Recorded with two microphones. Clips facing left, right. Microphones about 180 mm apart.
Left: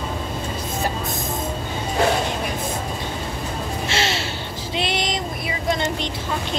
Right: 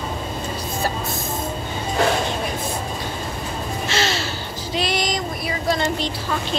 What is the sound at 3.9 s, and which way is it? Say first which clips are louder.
Gasp: right 2 dB; 25° left (ahead or behind).